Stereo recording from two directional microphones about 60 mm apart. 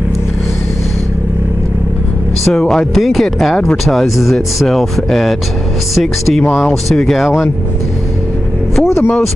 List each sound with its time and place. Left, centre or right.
2.4 s speech: centre
2.9 s speech: centre
3.5 s speech: centre
3.9 s speech: centre
8.8 s vehicle: left